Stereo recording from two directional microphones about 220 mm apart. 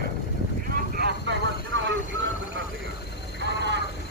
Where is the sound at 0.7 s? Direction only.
45° right (ahead or behind).